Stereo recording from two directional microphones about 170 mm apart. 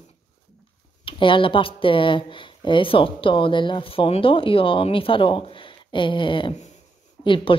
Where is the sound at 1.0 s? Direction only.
30° left (ahead or behind).